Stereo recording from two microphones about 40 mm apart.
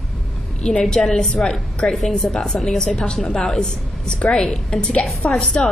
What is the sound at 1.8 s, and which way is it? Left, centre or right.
A woman's voice, left.